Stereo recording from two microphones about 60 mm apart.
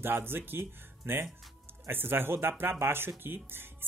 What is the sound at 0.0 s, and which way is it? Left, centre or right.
Speech, right.